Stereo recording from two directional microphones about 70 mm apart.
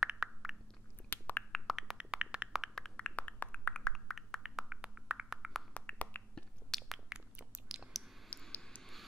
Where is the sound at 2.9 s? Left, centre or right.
Centre.